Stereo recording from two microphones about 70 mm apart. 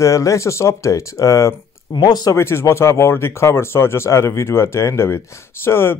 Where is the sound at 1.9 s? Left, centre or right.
Left.